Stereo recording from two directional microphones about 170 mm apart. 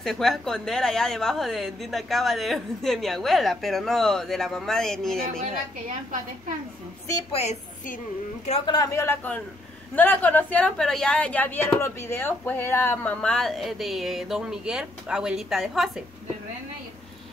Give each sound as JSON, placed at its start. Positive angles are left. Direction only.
{"t": 0.0, "sound": "a woman's voice", "side_deg": 0}
{"t": 7.3, "sound": "a woman's voice", "side_deg": 45}
{"t": 8.6, "sound": "a woman's voice", "side_deg": 20}